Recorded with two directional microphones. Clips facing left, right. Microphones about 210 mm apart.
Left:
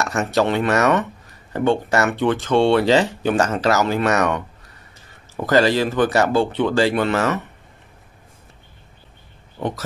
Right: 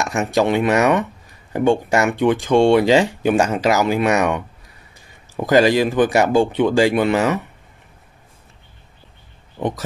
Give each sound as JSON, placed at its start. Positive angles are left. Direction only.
{"t": 0.0, "sound": "speech", "side_deg": -15}
{"t": 9.6, "sound": "speech", "side_deg": -15}